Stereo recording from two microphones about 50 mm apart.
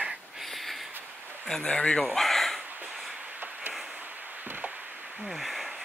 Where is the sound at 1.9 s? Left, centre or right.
Centre.